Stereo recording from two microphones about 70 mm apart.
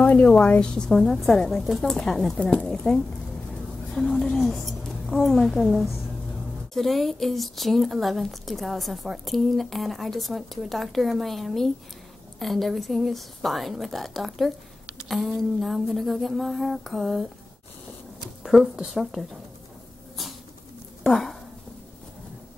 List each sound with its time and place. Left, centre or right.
0.0 s a sound: left
0.3 s a woman's voice: centre
18.4 s a woman's voice: centre
21.0 s speech: centre